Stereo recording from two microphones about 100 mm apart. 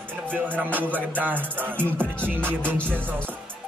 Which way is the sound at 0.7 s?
15° right (ahead or behind).